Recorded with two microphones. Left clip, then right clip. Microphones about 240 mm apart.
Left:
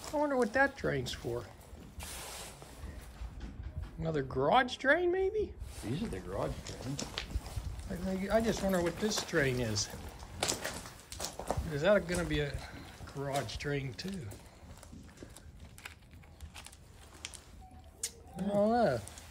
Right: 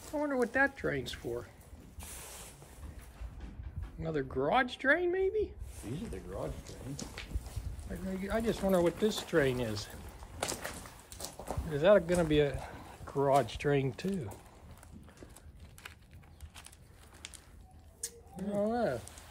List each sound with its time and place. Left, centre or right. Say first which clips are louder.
0.1 s speech: left 1 dB; centre
4.0 s speech: left 1 dB; centre
5.8 s speech: left 4 dB; left
7.9 s speech: left 4 dB; centre
10.4 s a sound: left 3 dB; centre
18.0 s speech: left 3 dB; centre